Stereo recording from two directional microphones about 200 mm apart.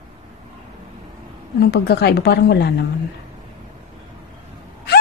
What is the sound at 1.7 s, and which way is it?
A woman's voice, 55° left (ahead or behind).